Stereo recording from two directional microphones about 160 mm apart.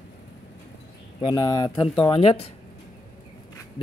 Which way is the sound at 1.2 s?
25° left (ahead or behind).